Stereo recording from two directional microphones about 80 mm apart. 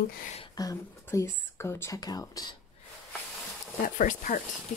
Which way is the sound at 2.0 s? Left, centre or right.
Left.